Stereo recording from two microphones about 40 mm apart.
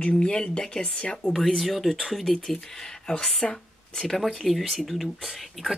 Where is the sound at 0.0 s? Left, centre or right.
Left.